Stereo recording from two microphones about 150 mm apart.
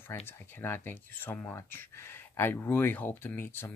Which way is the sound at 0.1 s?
15° left (ahead or behind).